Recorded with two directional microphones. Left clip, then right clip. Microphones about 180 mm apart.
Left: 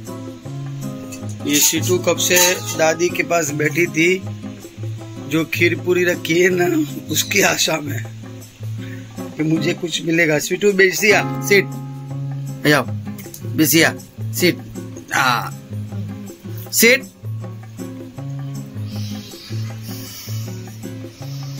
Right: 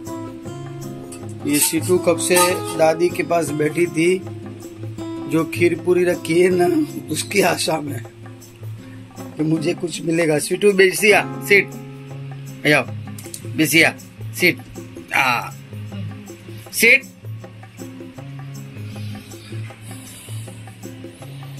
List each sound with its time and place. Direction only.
1.4 s speech: 5° right (ahead or behind)
9.2 s speech: centre (ahead or behind)
12.6 s speech: 30° left (ahead or behind)
15.1 s speech: 30° left (ahead or behind)